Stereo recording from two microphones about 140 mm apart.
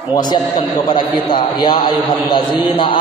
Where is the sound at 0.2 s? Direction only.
30° left (ahead or behind).